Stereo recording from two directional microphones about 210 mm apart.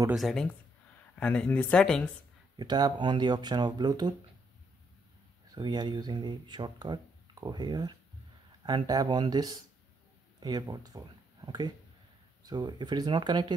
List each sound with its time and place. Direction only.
0.1 s speech: centre (ahead or behind)
2.5 s speech: 20° right (ahead or behind)
5.5 s speech: 20° right (ahead or behind)